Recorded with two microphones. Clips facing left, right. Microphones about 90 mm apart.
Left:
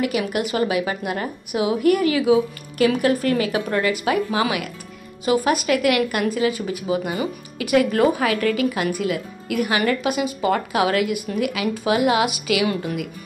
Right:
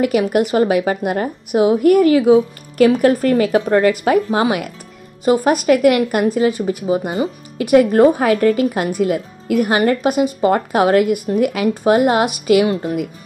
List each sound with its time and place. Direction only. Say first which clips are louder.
0.3 s a woman's voice: right 7 dB; 40° right (ahead or behind)
12.6 s speech: right 5 dB; 30° right (ahead or behind)